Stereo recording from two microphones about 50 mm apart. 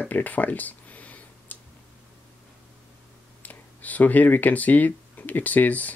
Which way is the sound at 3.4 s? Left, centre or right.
Left.